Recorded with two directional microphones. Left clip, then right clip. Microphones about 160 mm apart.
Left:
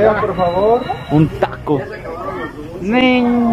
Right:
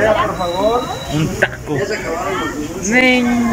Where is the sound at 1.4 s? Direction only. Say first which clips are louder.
Right 1 dB; 25° left (ahead or behind).